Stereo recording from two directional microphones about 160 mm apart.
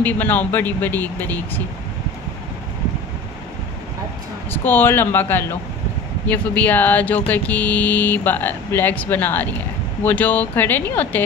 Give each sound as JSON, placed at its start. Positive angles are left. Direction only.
{"t": 0.0, "sound": "speech", "side_deg": 10}
{"t": 4.5, "sound": "speech", "side_deg": 10}